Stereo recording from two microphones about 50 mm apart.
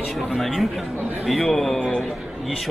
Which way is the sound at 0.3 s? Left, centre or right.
Centre.